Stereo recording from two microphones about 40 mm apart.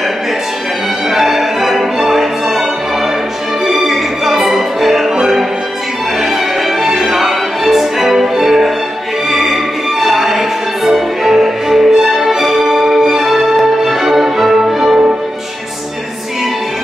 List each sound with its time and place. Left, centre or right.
1.1 s music: centre